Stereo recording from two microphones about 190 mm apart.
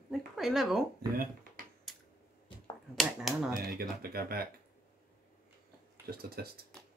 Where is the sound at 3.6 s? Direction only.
55° right (ahead or behind).